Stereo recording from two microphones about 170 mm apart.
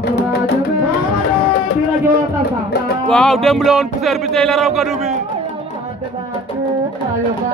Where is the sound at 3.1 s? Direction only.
5° left (ahead or behind).